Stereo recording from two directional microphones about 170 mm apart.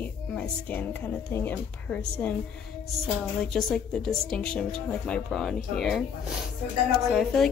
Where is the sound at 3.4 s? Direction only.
5° left (ahead or behind).